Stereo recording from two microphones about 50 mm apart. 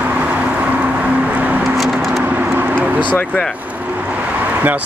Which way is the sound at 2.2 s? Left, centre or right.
Right.